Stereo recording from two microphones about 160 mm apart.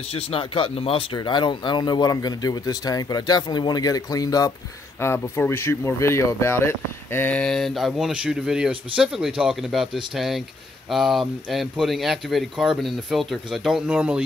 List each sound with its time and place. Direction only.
0.1 s speech: 35° left (ahead or behind); by 14.2 s 10° right (ahead or behind)